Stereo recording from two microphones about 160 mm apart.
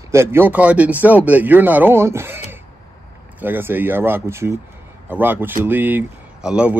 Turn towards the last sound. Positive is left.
turn(degrees=-5)  # may be behind; listen again after turning